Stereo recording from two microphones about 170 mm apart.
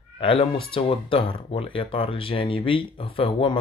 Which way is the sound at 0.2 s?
30° left (ahead or behind).